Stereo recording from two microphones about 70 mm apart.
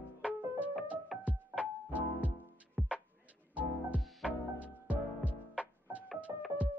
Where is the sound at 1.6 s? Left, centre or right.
Right.